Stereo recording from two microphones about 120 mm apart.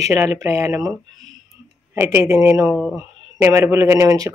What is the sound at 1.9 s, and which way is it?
Speech, 20° right (ahead or behind).